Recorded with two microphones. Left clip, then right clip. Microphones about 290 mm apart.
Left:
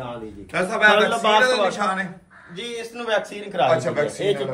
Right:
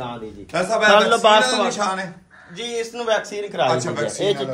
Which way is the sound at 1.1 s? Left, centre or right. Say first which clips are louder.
Right 4 dB; right.